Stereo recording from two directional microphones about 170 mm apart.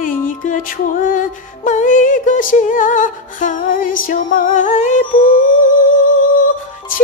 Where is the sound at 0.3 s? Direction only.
50° left (ahead or behind).